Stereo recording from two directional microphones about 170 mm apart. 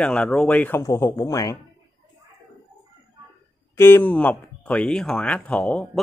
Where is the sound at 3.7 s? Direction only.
15° left (ahead or behind).